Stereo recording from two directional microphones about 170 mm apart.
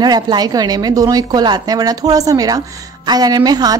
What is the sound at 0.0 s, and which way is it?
A woman's voice, 25° right (ahead or behind).